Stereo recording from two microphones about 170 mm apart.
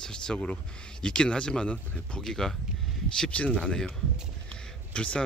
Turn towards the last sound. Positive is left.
turn(degrees=5)  # may be behind; listen again after turning